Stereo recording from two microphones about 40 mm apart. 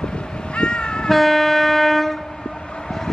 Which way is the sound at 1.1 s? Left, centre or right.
Centre.